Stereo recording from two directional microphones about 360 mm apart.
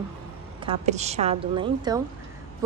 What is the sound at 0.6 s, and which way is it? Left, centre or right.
A woman's voice, centre.